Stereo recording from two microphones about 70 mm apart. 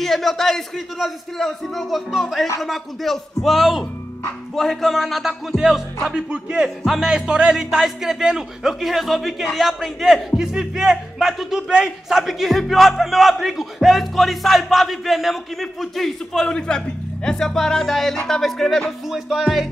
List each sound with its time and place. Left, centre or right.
0.0 s speech: centre